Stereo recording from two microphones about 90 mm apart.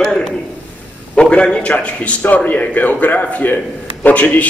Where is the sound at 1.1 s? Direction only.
10° left (ahead or behind).